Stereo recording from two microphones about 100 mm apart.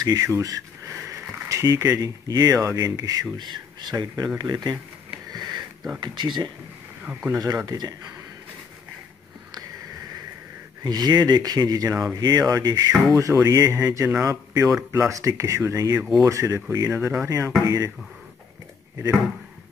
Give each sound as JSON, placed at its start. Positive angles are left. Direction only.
{"t": 0.0, "sound": "speech", "side_deg": -35}
{"t": 5.3, "sound": "sniff", "side_deg": -45}
{"t": 5.9, "sound": "speech", "side_deg": -50}
{"t": 7.3, "sound": "speech", "side_deg": -40}
{"t": 10.8, "sound": "speech", "side_deg": -45}